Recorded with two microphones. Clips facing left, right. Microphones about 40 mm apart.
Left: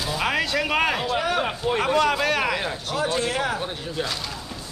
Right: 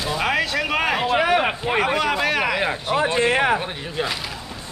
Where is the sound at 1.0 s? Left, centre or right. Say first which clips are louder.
Right 5 dB; right.